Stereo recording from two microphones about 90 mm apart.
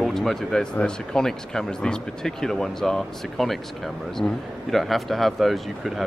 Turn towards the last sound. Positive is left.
turn(degrees=0)  # may be behind; listen again after turning